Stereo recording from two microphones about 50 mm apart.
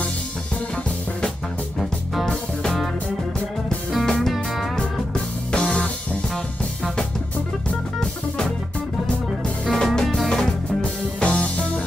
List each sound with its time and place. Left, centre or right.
4.0 s music: centre
5.5 s music: left
8.0 s music: centre
9.7 s music: centre
10.8 s music: left